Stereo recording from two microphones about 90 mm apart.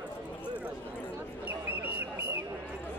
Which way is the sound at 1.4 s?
25° right (ahead or behind).